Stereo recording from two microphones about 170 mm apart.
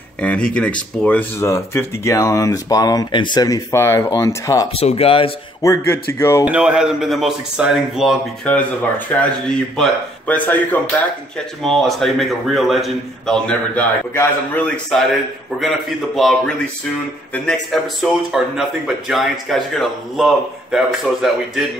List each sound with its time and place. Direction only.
0.2 s speech: 5° left (ahead or behind)
4.7 s speech: 35° left (ahead or behind)
5.6 s speech: 15° left (ahead or behind)
6.4 s a man's voice: 5° right (ahead or behind)
15.5 s a man's voice: 5° right (ahead or behind)